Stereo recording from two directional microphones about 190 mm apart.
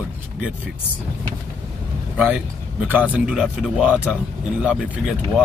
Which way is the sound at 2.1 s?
5° right (ahead or behind).